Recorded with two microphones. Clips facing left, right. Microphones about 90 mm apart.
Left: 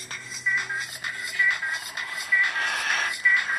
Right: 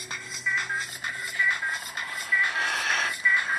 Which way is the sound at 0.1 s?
Centre (ahead or behind).